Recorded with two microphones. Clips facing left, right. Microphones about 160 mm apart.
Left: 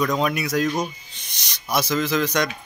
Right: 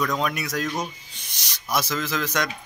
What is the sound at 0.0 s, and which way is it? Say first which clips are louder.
Speech: left 3 dB; 5° left (ahead or behind).